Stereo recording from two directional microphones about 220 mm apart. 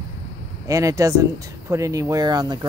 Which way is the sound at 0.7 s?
15° right (ahead or behind).